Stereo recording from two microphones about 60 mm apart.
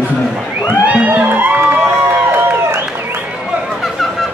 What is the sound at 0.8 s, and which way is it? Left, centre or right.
Music, right.